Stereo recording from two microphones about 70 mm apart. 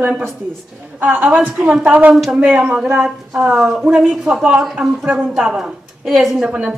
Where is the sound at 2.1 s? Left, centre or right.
Centre.